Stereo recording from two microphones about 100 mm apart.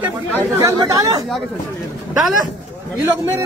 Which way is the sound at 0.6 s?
35° right (ahead or behind).